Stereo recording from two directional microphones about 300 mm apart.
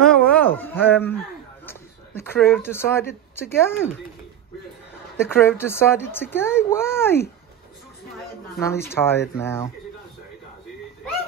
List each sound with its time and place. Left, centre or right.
0.1 s a sound: centre
0.8 s speech: centre
5.1 s speech: centre
8.5 s speech: centre